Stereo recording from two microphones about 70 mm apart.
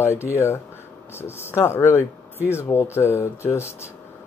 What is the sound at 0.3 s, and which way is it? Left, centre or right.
Speech, left.